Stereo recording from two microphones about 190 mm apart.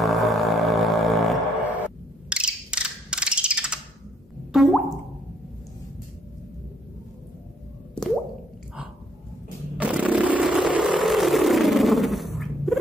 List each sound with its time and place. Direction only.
0.0 s a sound: centre (ahead or behind)
4.5 s plop: centre (ahead or behind)
9.8 s vehicle: 5° right (ahead or behind)